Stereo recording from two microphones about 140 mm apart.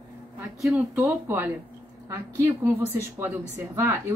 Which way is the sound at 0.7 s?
20° right (ahead or behind).